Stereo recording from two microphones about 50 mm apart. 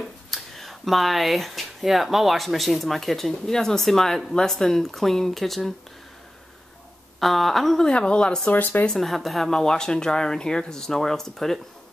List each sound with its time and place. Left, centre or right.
0.0 s speech: centre
7.2 s speech: centre
7.9 s speech: left
8.5 s speech: left
8.8 s speech: centre
9.5 s speech: centre